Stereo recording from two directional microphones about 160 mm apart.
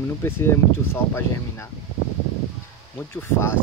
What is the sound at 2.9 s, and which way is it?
Speech, 15° left (ahead or behind).